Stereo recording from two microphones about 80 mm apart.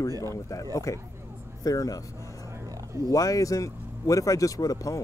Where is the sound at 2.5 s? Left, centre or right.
Right.